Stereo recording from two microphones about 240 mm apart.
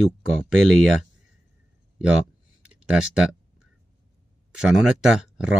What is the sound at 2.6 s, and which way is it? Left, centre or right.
Speech, centre.